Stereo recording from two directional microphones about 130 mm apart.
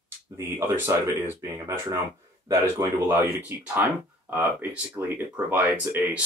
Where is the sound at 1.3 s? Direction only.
25° right (ahead or behind).